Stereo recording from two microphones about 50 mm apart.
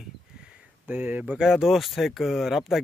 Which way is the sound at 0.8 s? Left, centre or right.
Right.